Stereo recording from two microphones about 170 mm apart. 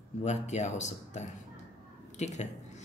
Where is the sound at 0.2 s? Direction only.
40° left (ahead or behind).